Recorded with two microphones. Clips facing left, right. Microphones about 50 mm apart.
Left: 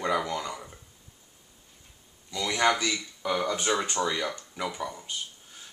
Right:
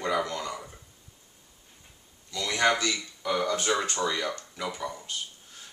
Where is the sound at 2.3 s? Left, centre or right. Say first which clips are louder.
Even; centre.